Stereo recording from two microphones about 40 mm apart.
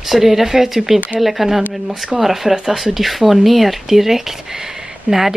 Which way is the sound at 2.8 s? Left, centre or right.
Centre.